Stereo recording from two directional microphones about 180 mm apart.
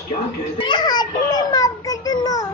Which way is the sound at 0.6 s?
25° left (ahead or behind).